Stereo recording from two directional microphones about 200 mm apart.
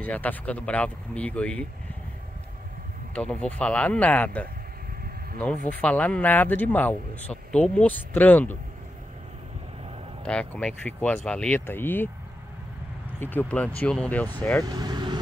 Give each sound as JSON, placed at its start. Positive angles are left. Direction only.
{"t": 0.0, "sound": "speech", "side_deg": 10}
{"t": 3.2, "sound": "speech", "side_deg": 5}
{"t": 5.7, "sound": "speech", "side_deg": 5}
{"t": 10.2, "sound": "speech", "side_deg": 5}
{"t": 13.2, "sound": "speech", "side_deg": 10}
{"t": 14.6, "sound": "speech", "side_deg": -20}